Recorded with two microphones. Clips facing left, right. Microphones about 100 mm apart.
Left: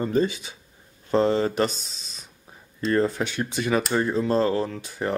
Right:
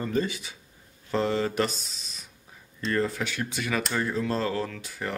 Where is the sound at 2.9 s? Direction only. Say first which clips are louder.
Left 5 dB; 30° left (ahead or behind).